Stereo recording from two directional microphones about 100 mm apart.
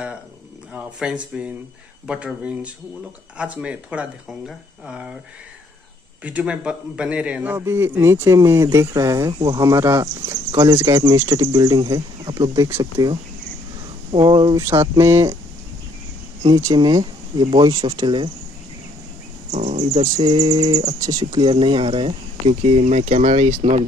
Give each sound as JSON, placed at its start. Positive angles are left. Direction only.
{"t": 0.7, "sound": "speech", "side_deg": -10}
{"t": 6.2, "sound": "speech", "side_deg": -15}
{"t": 7.5, "sound": "speech", "side_deg": -25}
{"t": 10.2, "sound": "speech", "side_deg": -40}
{"t": 14.7, "sound": "speech", "side_deg": -30}
{"t": 16.5, "sound": "speech", "side_deg": -40}
{"t": 20.3, "sound": "speech", "side_deg": -40}